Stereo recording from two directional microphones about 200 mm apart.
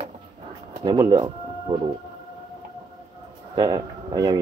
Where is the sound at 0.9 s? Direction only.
20° right (ahead or behind).